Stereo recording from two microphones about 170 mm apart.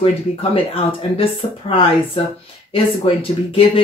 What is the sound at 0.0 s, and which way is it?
Speech, 35° left (ahead or behind).